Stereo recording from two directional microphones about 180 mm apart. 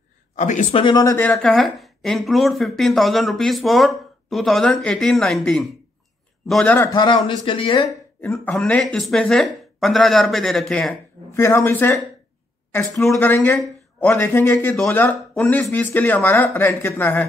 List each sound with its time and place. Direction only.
0.4 s speech: 40° left (ahead or behind)
0.7 s speech: 25° left (ahead or behind)
1.1 s speech: 5° left (ahead or behind)
6.9 s speech: 25° left (ahead or behind)
8.2 s speech: 5° left (ahead or behind)
11.3 s speech: 15° left (ahead or behind)
13.0 s speech: 5° left (ahead or behind)